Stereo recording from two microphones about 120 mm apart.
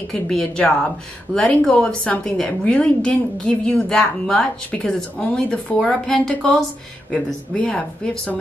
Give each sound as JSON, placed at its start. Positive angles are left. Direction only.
{"t": 0.1, "sound": "speech", "side_deg": 5}